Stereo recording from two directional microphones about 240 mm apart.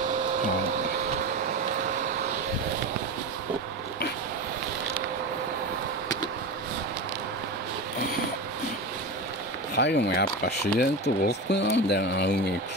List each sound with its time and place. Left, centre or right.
9.8 s speech: left